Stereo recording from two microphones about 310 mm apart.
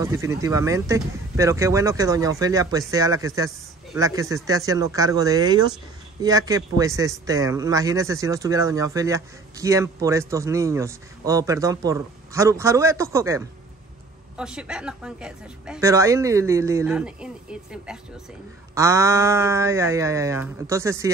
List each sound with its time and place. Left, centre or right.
0.0 s a man's voice: centre